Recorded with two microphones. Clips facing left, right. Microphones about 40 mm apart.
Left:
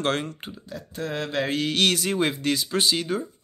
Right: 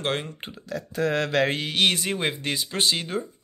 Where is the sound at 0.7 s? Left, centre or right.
Right.